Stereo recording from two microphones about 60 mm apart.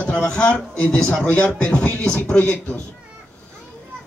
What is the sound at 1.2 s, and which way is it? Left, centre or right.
Speech, left.